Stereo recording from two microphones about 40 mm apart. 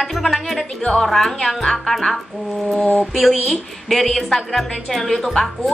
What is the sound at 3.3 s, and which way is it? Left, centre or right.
Speech, centre.